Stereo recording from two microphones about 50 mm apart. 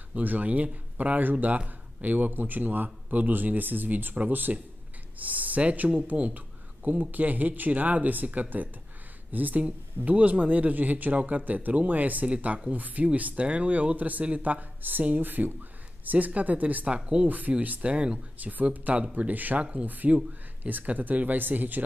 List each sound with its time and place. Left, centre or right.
0.1 s speech: right